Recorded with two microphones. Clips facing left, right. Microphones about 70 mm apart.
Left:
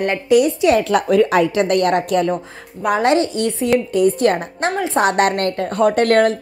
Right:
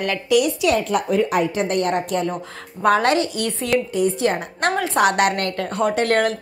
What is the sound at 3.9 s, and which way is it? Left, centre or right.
Speech, left.